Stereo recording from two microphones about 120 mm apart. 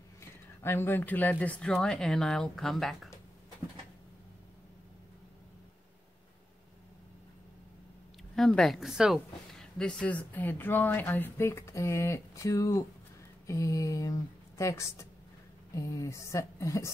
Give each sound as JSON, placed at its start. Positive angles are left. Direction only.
{"t": 0.2, "sound": "speech", "side_deg": 20}
{"t": 8.4, "sound": "speech", "side_deg": 5}